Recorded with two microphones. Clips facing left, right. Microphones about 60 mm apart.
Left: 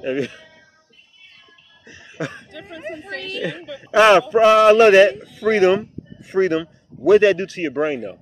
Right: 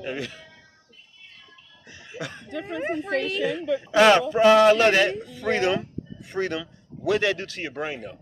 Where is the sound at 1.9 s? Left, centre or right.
Left.